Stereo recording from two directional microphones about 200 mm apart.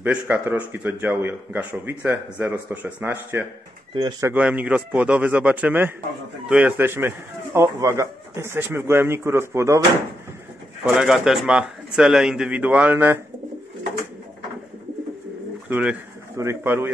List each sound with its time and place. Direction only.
0.0 s speech: 5° right (ahead or behind)
4.3 s speech: 5° right (ahead or behind)
11.0 s speech: centre (ahead or behind)
15.7 s speech: 10° right (ahead or behind)